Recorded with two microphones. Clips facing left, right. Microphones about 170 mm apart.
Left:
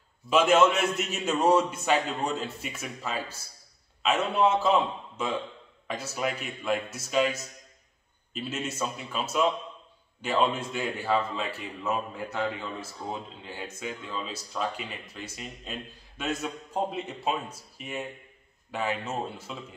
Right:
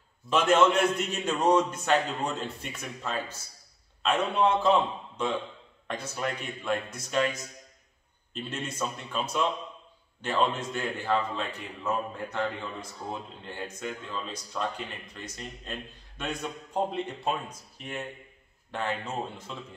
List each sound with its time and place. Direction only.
0.3 s a man's voice: 10° left (ahead or behind)